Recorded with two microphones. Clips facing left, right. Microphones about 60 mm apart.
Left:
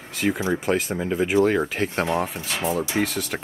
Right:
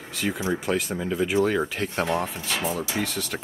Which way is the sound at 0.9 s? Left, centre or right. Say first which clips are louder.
Left 3 dB; centre.